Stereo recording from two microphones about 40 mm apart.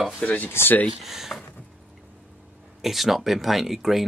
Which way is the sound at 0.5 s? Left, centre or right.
Left.